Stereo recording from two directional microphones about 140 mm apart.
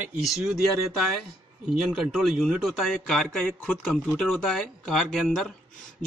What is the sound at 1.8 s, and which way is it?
Speech, 5° right (ahead or behind).